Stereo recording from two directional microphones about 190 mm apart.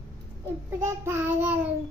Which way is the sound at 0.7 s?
10° right (ahead or behind).